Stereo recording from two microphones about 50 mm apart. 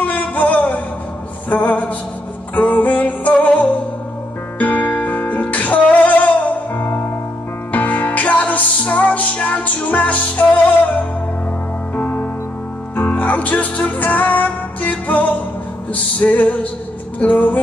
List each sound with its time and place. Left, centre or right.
0.0 s a sound: left
1.5 s music: left
11.9 s music: left